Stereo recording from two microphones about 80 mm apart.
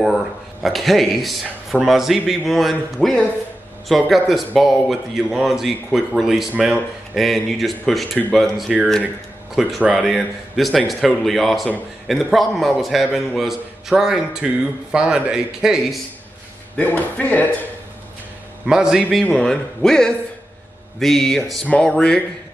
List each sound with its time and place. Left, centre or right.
0.0 s a man's voice: centre
16.7 s speech: left
18.7 s speech: centre
19.3 s a man's voice: centre